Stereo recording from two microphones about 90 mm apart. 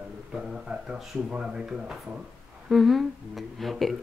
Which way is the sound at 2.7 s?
Centre (ahead or behind).